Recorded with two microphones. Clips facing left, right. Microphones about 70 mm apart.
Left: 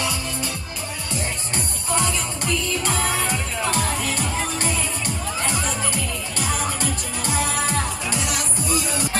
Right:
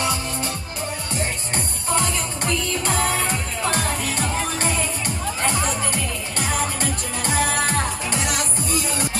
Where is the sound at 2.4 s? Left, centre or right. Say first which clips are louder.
Even; right.